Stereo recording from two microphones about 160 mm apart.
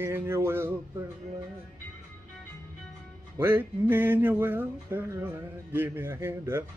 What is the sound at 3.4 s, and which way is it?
Speech, 10° right (ahead or behind).